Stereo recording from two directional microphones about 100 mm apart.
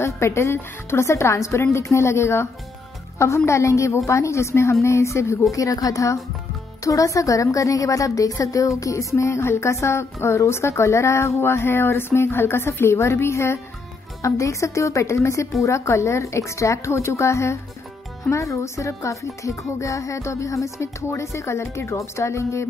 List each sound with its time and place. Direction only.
0.0 s a woman's voice: 30° left (ahead or behind)